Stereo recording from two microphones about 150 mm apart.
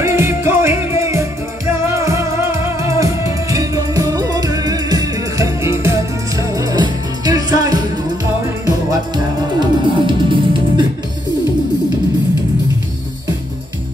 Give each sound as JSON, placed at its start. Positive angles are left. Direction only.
{"t": 0.0, "sound": "music", "side_deg": -15}